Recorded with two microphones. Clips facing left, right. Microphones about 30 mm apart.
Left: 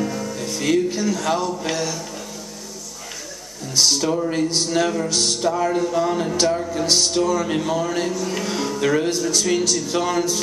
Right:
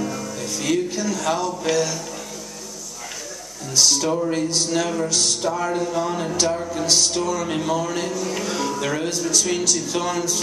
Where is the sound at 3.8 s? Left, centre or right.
Centre.